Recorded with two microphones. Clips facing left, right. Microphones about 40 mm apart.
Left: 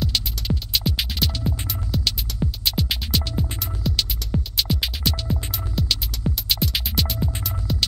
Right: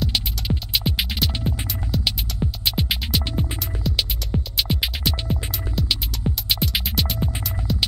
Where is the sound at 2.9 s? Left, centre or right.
Centre.